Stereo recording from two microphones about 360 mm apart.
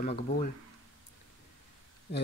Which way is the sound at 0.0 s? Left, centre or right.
Left.